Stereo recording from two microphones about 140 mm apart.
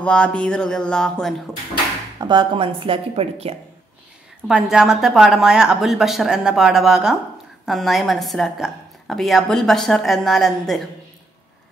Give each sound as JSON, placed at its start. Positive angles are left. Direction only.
{"t": 0.0, "sound": "a woman's voice", "side_deg": 5}
{"t": 2.1, "sound": "speech", "side_deg": -35}
{"t": 4.5, "sound": "a woman's voice", "side_deg": -5}